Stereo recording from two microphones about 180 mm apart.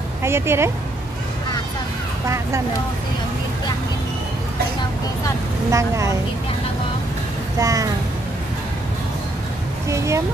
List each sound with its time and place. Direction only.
0.2 s a woman's voice: 15° right (ahead or behind)
2.2 s a woman's voice: 15° right (ahead or behind)
5.7 s a woman's voice: 15° right (ahead or behind)
7.5 s speech: 20° right (ahead or behind)
9.8 s a woman's voice: 15° right (ahead or behind)